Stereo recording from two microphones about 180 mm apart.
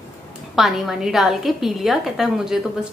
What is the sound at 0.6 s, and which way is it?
A woman's voice, centre (ahead or behind).